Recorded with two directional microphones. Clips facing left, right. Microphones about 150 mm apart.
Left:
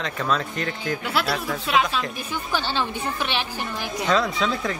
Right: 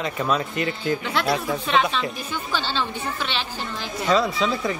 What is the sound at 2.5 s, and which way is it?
A woman's voice, 15° left (ahead or behind).